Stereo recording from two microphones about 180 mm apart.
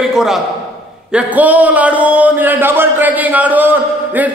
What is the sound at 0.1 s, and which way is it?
A man's voice, 5° right (ahead or behind).